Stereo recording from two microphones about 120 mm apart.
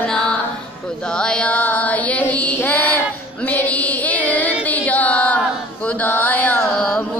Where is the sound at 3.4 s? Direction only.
15° left (ahead or behind).